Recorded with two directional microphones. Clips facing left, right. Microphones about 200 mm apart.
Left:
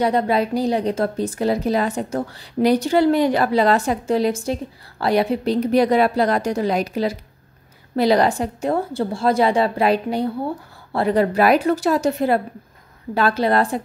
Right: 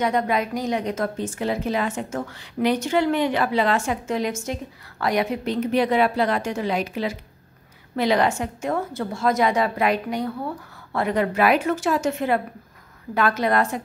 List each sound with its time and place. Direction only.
0.0 s a woman's voice: 30° left (ahead or behind)